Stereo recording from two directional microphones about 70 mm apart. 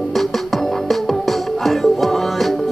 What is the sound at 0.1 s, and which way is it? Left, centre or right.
Music, centre.